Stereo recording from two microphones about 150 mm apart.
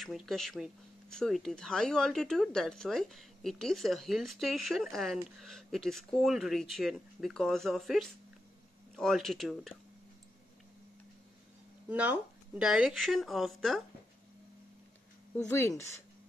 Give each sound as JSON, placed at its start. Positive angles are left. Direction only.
{"t": 0.0, "sound": "speech", "side_deg": 0}
{"t": 11.9, "sound": "speech", "side_deg": -10}
{"t": 15.3, "sound": "speech", "side_deg": 15}